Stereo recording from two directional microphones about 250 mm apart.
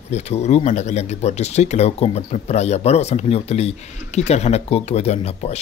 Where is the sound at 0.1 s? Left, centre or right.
Left.